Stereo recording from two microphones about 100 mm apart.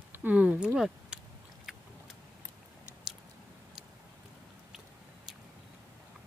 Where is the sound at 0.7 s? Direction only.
5° right (ahead or behind).